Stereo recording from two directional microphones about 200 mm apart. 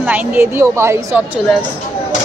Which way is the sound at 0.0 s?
10° right (ahead or behind).